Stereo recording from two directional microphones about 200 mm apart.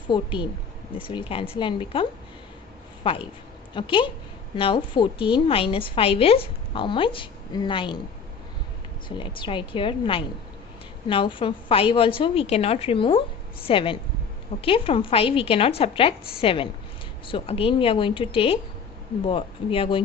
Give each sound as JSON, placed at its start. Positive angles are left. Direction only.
{"t": 0.1, "sound": "a woman's voice", "side_deg": 25}
{"t": 9.2, "sound": "a woman's voice", "side_deg": 25}